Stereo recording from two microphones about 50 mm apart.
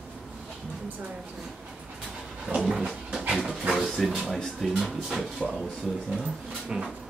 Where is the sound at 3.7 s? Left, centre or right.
Centre.